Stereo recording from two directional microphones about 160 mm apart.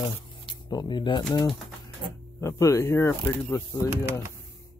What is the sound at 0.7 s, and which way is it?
Speech, 25° left (ahead or behind).